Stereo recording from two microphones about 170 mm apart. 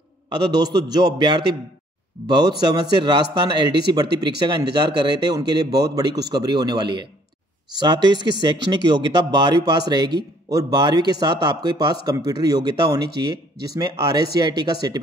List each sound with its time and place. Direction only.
0.3 s speech: 25° right (ahead or behind)